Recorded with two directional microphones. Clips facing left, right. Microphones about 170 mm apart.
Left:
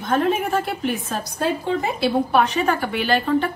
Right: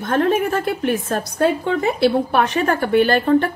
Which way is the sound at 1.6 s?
65° right (ahead or behind).